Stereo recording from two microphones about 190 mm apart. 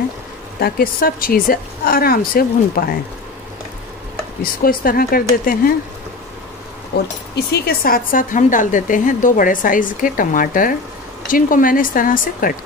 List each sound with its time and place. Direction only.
0.6 s a woman's voice: 50° left (ahead or behind)
4.4 s a woman's voice: 50° left (ahead or behind)
7.3 s a woman's voice: 55° left (ahead or behind)